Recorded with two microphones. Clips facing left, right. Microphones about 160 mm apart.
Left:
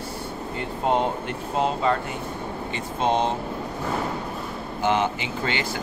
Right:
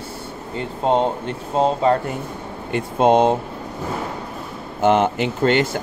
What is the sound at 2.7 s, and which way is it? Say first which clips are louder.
Speech: right 9 dB; 55° right (ahead or behind).